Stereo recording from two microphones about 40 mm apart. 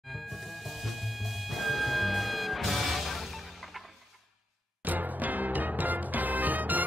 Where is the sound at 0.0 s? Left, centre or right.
Centre.